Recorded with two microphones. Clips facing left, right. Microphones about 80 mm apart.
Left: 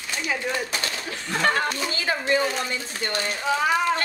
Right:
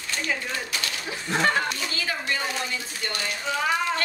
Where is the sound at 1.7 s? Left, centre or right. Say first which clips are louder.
Left 4 dB; left.